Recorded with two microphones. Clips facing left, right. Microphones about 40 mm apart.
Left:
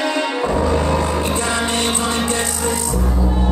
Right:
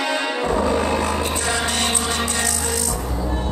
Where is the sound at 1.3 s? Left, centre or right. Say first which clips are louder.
Left 3 dB; left.